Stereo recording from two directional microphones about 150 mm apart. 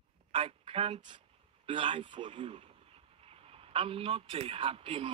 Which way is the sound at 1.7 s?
35° right (ahead or behind).